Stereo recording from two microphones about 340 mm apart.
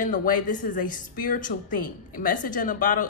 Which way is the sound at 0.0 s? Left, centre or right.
Left.